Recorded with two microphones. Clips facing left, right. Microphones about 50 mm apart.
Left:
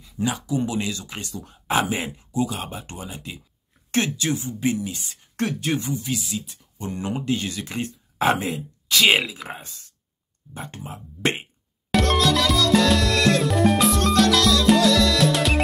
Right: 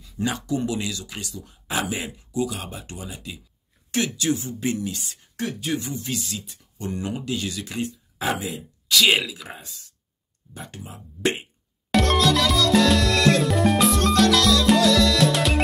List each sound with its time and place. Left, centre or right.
0.2 s speech: centre
0.7 s speech: left
4.3 s speech: centre
5.3 s speech: left
5.9 s speech: centre
6.8 s speech: left
8.8 s speech: left
11.9 s music: centre